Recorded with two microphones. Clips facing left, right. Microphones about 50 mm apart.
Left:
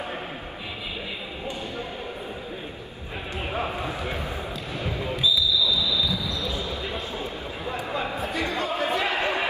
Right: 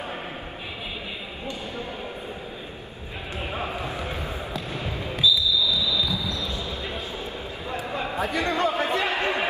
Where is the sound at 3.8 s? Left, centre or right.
Left.